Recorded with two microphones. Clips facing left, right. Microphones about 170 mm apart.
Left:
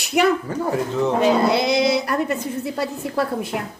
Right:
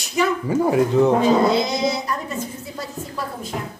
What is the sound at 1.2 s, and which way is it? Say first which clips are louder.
A woman's voice: even; 70° left (ahead or behind).